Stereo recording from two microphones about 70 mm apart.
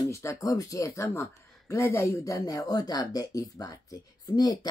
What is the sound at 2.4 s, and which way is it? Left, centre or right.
Speech, left.